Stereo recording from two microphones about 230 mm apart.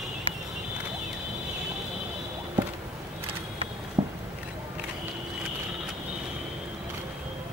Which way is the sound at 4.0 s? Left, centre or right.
Centre.